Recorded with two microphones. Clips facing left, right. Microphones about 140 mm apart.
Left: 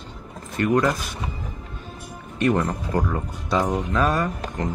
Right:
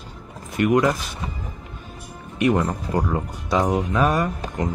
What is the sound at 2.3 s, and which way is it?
Speech, 10° right (ahead or behind).